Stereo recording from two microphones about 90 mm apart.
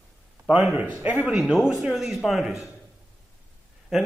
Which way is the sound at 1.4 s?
Centre (ahead or behind).